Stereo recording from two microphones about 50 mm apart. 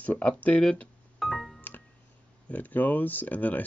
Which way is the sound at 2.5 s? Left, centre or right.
Left.